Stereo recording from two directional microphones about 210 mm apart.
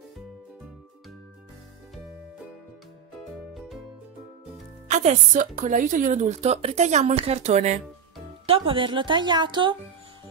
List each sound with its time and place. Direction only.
3.5 s music: centre (ahead or behind)
4.8 s a woman's voice: 35° right (ahead or behind)